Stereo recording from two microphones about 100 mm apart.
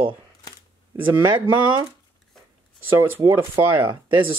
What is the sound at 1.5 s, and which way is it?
Speech, 50° right (ahead or behind).